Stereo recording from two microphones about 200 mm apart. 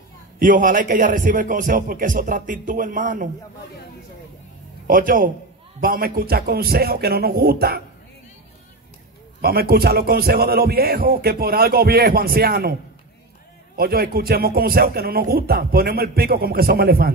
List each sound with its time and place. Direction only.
0.4 s speech: 40° right (ahead or behind)
4.8 s a man's voice: 45° right (ahead or behind)
9.4 s a man's voice: 50° right (ahead or behind)
13.7 s a man's voice: 50° right (ahead or behind)